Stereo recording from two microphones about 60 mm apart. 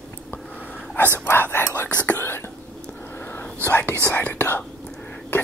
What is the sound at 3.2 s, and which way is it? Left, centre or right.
Whispering, left.